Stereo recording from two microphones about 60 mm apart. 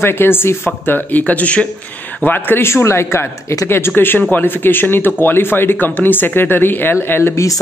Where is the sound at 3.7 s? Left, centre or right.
Left.